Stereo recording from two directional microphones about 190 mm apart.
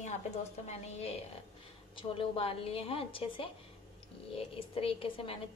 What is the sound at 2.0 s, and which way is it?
A woman's voice, 30° left (ahead or behind).